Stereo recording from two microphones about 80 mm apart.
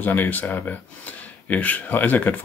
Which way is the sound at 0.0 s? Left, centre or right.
Left.